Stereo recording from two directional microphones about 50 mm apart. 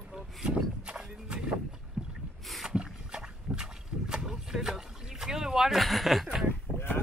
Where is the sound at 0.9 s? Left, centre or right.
Centre.